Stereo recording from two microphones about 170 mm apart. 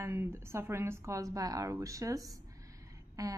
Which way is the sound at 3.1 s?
20° right (ahead or behind).